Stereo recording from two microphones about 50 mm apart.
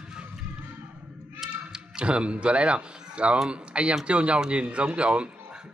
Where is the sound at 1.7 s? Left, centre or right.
Right.